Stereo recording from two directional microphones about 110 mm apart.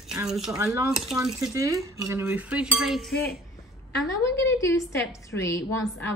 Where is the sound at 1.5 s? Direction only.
30° right (ahead or behind).